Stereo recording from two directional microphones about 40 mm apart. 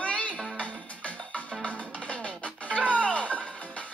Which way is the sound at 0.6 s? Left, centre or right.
Left.